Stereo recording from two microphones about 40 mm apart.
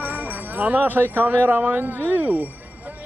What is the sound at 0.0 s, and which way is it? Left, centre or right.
Speech, right.